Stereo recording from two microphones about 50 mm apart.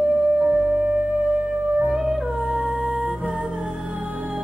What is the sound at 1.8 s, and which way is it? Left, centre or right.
Music, centre.